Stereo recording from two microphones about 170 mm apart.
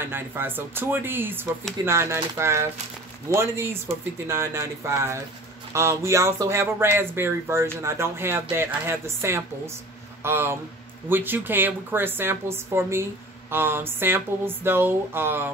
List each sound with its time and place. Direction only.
0.0 s speech: 10° right (ahead or behind)